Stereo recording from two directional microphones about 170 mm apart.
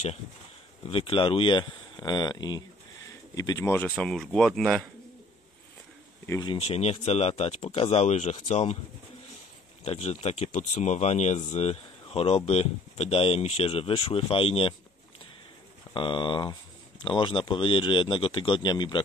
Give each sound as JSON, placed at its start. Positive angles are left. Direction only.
{"t": 0.8, "sound": "speech", "side_deg": 30}
{"t": 6.4, "sound": "speech", "side_deg": 30}
{"t": 9.8, "sound": "speech", "side_deg": 40}
{"t": 15.9, "sound": "speech", "side_deg": 30}